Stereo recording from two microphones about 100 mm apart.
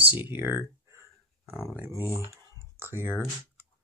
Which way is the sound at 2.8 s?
25° right (ahead or behind).